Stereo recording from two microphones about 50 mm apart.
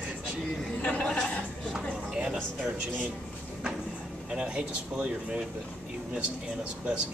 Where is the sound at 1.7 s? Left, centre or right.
Centre.